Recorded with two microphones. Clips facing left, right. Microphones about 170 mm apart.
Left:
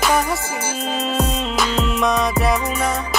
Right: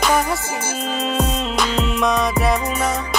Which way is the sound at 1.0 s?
Centre (ahead or behind).